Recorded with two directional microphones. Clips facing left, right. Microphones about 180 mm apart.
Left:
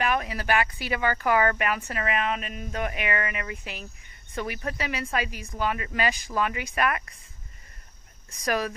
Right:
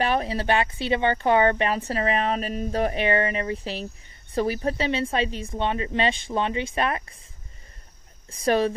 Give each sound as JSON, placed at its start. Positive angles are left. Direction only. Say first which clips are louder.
{"t": 0.0, "sound": "speech", "louder": "right 3 dB", "side_deg": -30}
{"t": 8.3, "sound": "speech", "louder": "right 6 dB", "side_deg": -30}